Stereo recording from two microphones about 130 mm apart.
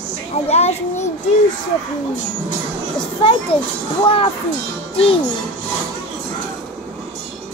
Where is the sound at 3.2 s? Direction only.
45° left (ahead or behind).